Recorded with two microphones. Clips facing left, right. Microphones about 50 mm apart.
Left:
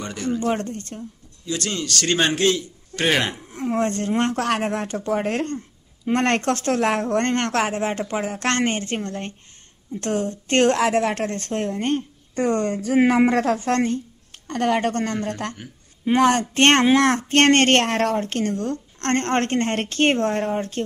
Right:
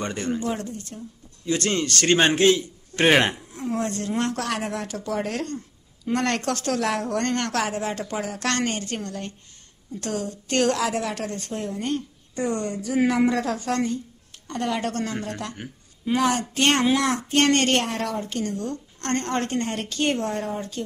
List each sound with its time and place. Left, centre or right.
0.0 s speech: right
0.4 s speech: left
1.4 s a man's voice: right
3.5 s a woman's voice: left